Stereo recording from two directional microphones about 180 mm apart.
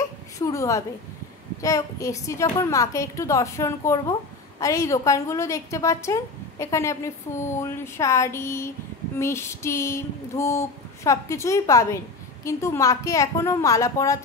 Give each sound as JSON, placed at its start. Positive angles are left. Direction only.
{"t": 0.4, "sound": "a woman's voice", "side_deg": 15}